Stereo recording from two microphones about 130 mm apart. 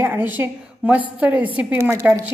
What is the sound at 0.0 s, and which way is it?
A woman's voice, 15° right (ahead or behind).